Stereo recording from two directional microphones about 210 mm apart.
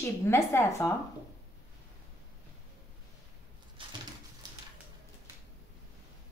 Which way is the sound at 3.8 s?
25° right (ahead or behind).